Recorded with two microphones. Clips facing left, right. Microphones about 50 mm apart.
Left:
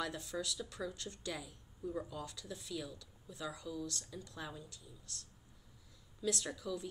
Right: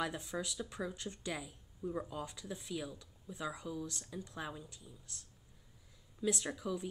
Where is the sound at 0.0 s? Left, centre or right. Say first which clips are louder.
Right 2 dB; right.